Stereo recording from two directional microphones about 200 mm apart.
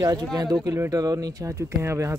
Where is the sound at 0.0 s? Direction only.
15° right (ahead or behind).